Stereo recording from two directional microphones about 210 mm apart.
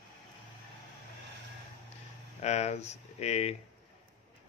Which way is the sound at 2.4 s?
30° left (ahead or behind).